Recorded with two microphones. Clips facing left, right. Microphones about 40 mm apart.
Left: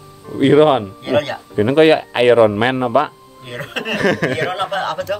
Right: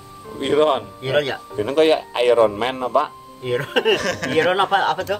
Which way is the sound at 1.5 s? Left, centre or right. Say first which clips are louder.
Left 5 dB; left.